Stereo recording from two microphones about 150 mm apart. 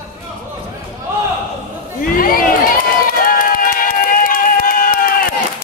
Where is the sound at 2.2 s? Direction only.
75° left (ahead or behind).